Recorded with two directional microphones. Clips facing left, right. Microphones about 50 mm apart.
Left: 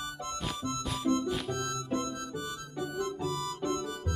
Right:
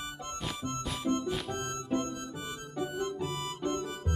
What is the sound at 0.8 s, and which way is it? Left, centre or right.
Music, centre.